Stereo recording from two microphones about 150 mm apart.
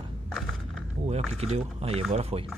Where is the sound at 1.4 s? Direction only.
45° right (ahead or behind).